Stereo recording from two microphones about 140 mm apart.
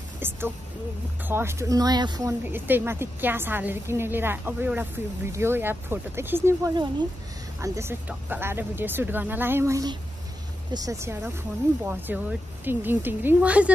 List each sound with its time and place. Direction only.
0.2 s a sound: 15° right (ahead or behind)
1.2 s speech: 15° right (ahead or behind)
2.4 s a woman's voice: 15° right (ahead or behind)